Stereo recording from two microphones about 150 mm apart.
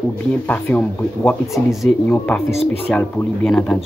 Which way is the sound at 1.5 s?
Centre (ahead or behind).